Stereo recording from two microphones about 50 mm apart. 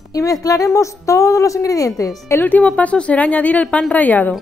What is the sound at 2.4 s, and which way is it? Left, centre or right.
A woman's voice, left.